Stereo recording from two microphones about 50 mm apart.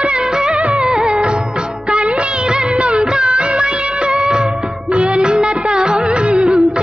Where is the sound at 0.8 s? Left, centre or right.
Centre.